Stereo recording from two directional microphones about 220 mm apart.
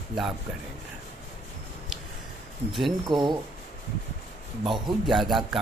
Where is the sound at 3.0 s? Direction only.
20° right (ahead or behind).